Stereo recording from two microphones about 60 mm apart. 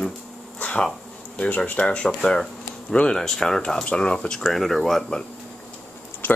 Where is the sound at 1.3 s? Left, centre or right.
Centre.